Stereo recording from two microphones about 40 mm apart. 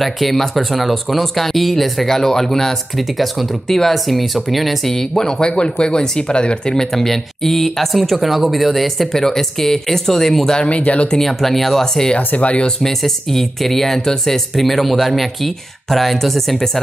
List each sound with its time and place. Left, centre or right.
0.0 s speech: centre
3.2 s speech: centre
4.9 s speech: centre
6.7 s speech: centre
10.7 s speech: left
11.1 s speech: centre
12.4 s speech: left
12.6 s speech: centre